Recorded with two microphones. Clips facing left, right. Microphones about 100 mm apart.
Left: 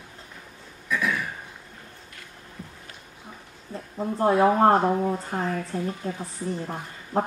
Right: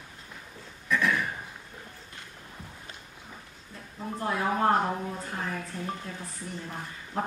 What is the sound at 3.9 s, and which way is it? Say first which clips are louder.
A woman's voice: left 10 dB; 40° left (ahead or behind).